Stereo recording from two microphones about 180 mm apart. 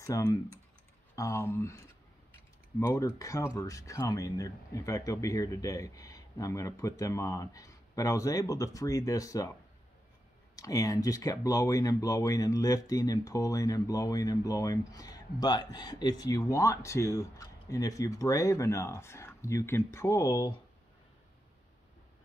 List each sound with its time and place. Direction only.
0.0 s speech: 20° left (ahead or behind)
10.5 s speech: 20° left (ahead or behind)